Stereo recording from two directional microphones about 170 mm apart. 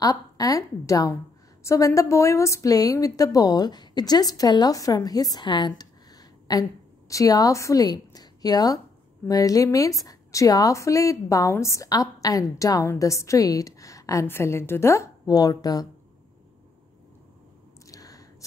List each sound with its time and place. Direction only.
0.0 s a woman's voice: 20° left (ahead or behind)
17.8 s whispering: 20° left (ahead or behind)